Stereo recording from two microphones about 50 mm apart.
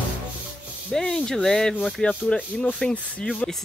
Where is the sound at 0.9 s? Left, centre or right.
Centre.